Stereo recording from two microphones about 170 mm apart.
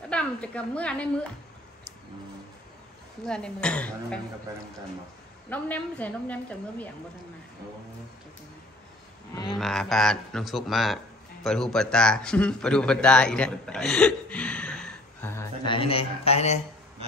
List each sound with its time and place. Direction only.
0.1 s a woman's voice: 5° left (ahead or behind)
3.3 s a man's voice: 5° left (ahead or behind)
5.5 s a woman's voice: 10° left (ahead or behind)
9.5 s a man's voice: centre (ahead or behind)
15.6 s speech: 30° left (ahead or behind)